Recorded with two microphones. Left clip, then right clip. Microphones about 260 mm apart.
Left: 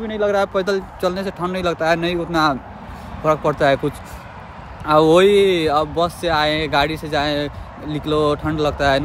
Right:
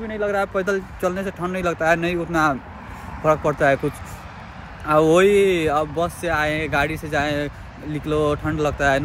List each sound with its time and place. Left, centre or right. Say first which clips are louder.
0.0 s speech: left 4 dB; centre
4.8 s speech: left 3 dB; centre